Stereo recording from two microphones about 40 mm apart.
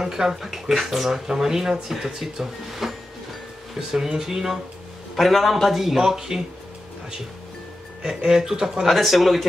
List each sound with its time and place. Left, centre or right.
0.0 s speech: centre
2.8 s music: centre
4.2 s speech: centre
5.1 s speech: centre
8.0 s speech: centre
8.8 s speech: centre